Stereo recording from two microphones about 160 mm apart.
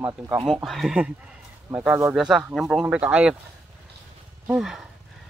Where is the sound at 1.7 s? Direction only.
15° right (ahead or behind).